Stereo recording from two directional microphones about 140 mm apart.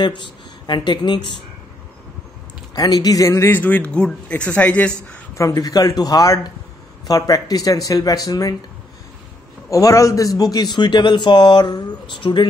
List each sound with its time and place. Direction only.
0.0 s speech: 35° left (ahead or behind)
2.7 s speech: 25° left (ahead or behind)
5.4 s speech: 25° left (ahead or behind)
9.7 s a man's voice: 25° left (ahead or behind)